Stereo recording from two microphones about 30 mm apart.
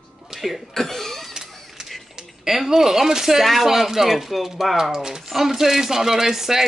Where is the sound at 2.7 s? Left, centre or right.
Centre.